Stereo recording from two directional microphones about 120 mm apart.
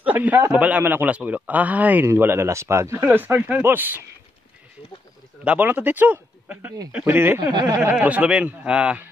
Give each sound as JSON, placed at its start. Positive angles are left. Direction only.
{"t": 0.0, "sound": "a man's voice", "side_deg": -15}
{"t": 5.4, "sound": "a man's voice", "side_deg": -15}
{"t": 7.5, "sound": "speech", "side_deg": -35}
{"t": 7.9, "sound": "a man's voice", "side_deg": -10}